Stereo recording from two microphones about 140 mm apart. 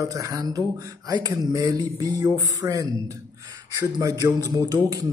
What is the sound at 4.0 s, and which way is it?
A man's voice, 25° right (ahead or behind).